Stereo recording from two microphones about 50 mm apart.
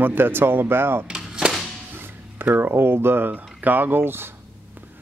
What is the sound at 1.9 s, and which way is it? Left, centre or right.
Speech, right.